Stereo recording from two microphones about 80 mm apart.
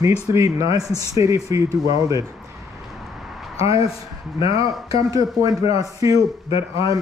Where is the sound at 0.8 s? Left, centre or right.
Left.